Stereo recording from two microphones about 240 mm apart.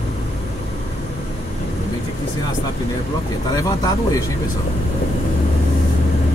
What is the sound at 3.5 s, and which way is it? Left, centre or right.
Speech, centre.